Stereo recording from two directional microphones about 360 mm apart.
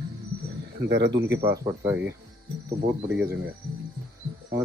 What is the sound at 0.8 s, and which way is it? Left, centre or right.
Speech, right.